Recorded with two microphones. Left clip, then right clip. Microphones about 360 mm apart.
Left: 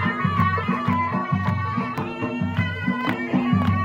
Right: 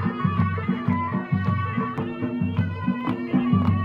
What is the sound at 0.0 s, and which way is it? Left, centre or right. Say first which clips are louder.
Music: left 5 dB; centre.